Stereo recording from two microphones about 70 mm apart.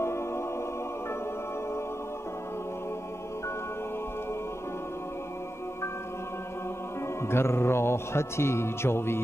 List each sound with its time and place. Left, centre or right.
0.0 s music: left
7.2 s speech: left